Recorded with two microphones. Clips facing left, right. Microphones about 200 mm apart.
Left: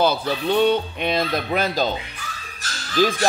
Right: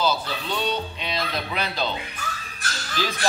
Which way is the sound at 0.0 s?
55° left (ahead or behind).